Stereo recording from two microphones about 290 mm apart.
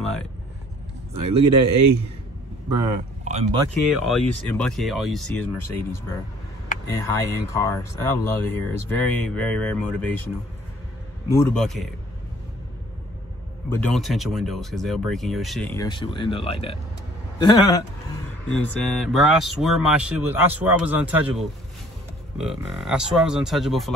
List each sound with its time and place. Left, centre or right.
1.1 s a man's voice: right
2.7 s speech: centre
4.1 s speech: centre
11.3 s speech: centre
13.7 s speech: centre
18.6 s speech: centre